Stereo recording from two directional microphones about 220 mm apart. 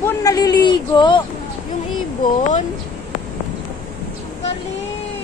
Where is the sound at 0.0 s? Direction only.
15° left (ahead or behind).